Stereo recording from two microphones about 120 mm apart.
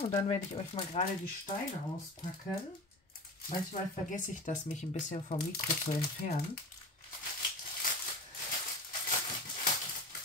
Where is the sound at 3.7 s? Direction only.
90° left.